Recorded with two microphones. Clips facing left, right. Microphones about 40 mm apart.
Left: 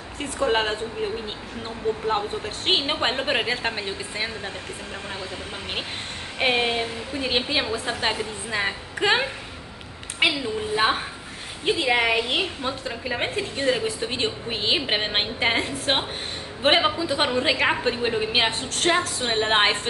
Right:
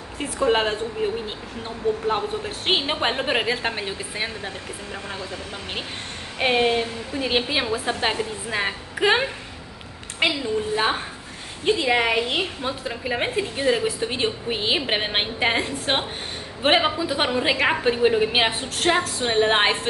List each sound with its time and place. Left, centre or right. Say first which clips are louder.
0.2 s a woman's voice: right 2 dB; centre
6.4 s a woman's voice: right 2 dB; centre